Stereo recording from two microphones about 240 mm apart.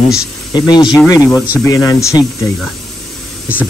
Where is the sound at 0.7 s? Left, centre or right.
Centre.